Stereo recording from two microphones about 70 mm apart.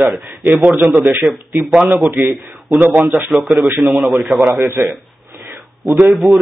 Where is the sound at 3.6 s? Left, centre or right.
Right.